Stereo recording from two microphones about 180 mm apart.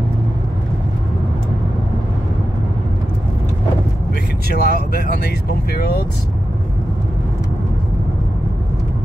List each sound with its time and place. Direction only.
4.6 s speech: 65° left (ahead or behind)